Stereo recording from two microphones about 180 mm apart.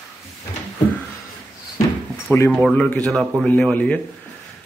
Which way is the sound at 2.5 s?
Centre (ahead or behind).